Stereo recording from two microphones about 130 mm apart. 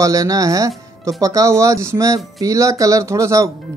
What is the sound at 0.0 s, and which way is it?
Speech, 25° right (ahead or behind).